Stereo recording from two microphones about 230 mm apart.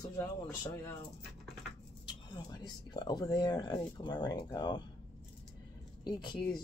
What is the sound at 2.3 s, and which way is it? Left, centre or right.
Speech, centre.